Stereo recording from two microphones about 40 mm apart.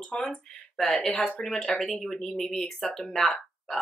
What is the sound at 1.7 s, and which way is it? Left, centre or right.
Speech, centre.